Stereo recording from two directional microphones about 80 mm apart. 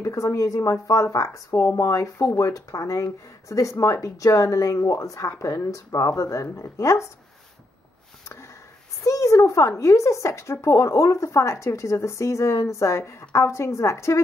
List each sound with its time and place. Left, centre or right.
0.0 s a sound: left
0.4 s speech: left
9.0 s speech: left